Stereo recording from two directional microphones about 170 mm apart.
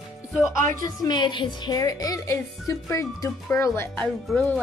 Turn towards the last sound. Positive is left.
turn(degrees=5)  # may be behind; listen again after turning